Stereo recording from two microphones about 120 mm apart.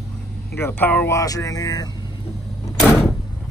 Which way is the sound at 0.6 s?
15° left (ahead or behind).